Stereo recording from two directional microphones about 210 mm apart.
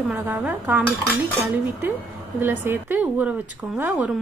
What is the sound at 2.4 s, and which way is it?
A woman's voice, 10° right (ahead or behind).